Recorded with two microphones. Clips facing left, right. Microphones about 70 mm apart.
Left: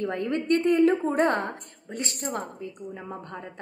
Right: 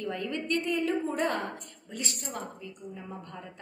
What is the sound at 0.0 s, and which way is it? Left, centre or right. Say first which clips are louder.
A woman's voice: left 6 dB; left.